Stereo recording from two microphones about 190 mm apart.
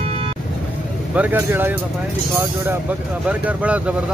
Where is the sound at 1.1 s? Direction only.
10° right (ahead or behind).